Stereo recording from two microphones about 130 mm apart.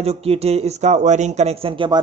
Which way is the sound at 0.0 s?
50° right (ahead or behind).